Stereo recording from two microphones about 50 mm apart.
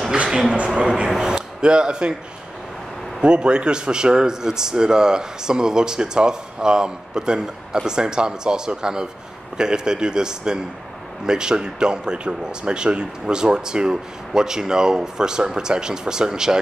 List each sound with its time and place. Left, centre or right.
0.3 s a sound: centre
0.7 s speech: centre
3.2 s a man's voice: centre